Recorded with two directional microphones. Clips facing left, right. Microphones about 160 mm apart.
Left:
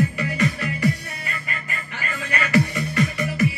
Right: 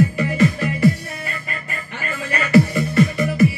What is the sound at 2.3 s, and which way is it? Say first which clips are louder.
Music: right 6 dB; 35° right (ahead or behind).